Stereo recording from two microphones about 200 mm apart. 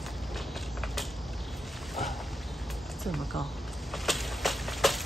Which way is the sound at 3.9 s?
Centre (ahead or behind).